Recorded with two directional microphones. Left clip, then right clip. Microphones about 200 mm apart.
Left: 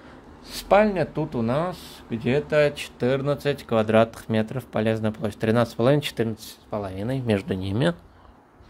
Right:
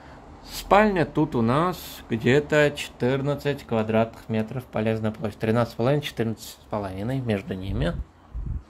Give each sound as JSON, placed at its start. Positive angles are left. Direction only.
{"t": 0.5, "sound": "speech", "side_deg": 5}